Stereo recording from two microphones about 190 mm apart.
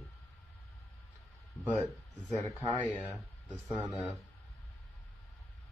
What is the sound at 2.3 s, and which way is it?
Speech, 15° left (ahead or behind).